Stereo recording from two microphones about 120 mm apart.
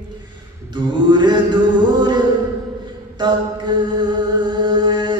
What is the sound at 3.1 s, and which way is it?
Mantra, 40° right (ahead or behind).